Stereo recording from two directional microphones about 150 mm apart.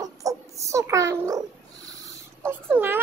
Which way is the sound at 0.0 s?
20° right (ahead or behind).